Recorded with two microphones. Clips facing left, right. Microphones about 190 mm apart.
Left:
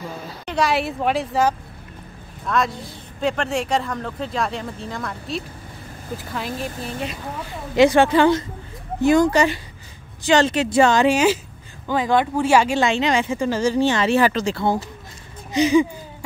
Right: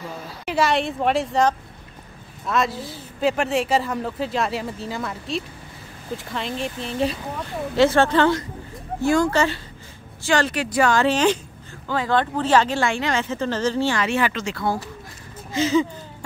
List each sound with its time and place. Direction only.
0.5 s speech: centre (ahead or behind)
7.7 s speech: 15° left (ahead or behind)
11.1 s speech: 10° left (ahead or behind)
14.0 s speech: 35° left (ahead or behind)
15.5 s a sound: 15° left (ahead or behind)